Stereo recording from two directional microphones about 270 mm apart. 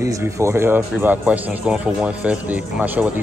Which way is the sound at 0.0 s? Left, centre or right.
Centre.